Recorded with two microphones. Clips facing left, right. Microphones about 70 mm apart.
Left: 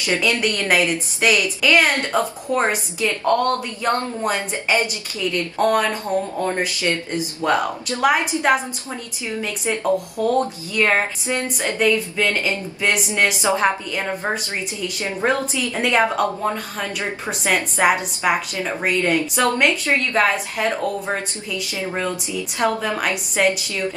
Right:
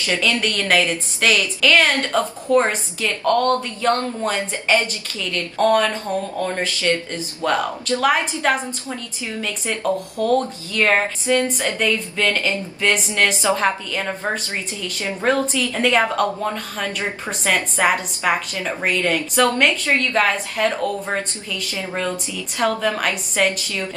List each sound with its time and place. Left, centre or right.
0.1 s speech: left
10.1 s speech: centre
19.6 s speech: centre
19.9 s speech: centre